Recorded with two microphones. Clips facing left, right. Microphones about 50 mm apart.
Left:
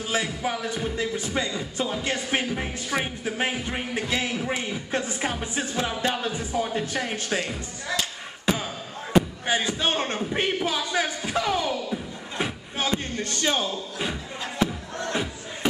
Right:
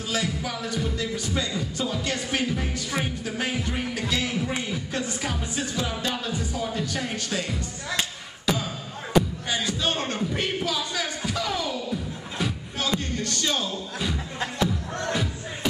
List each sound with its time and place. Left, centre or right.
0.1 s speech: left
9.1 s speech: left